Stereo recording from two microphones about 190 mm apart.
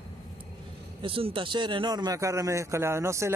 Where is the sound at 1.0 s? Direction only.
30° right (ahead or behind).